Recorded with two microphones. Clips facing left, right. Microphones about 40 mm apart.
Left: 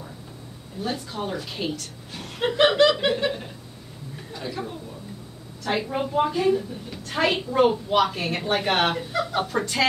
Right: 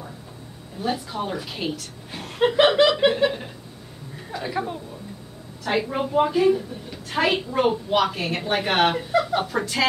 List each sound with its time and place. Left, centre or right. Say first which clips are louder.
0.8 s a woman's voice: right 3 dB; centre
2.1 s chuckle: right 5 dB; centre
2.6 s a woman's voice: even; centre
5.6 s a woman's voice: right 2 dB; centre